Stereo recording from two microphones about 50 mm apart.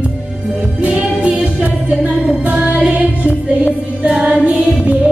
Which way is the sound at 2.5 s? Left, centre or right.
Right.